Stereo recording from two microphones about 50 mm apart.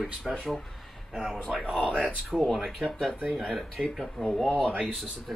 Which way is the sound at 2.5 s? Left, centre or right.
Centre.